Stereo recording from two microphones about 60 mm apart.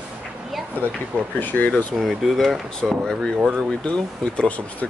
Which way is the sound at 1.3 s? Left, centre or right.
Left.